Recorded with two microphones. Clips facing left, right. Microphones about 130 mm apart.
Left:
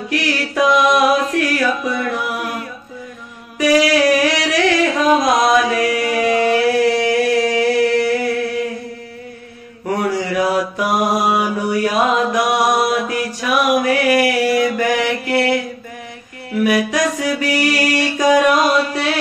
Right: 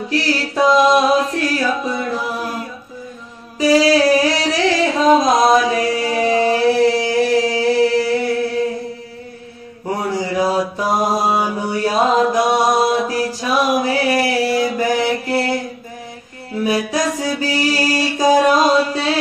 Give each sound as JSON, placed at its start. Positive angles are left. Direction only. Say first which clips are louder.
{"t": 0.1, "sound": "music", "louder": "even", "side_deg": -30}
{"t": 3.5, "sound": "a sound", "louder": "right 1 dB", "side_deg": -25}
{"t": 9.8, "sound": "mantra", "louder": "left 2 dB", "side_deg": -25}
{"t": 16.5, "sound": "music", "louder": "left 2 dB", "side_deg": -30}